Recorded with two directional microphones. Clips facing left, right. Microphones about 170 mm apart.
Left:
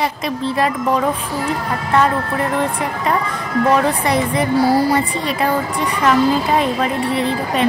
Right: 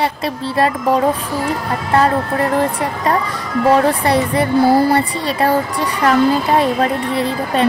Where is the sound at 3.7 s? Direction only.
35° right (ahead or behind).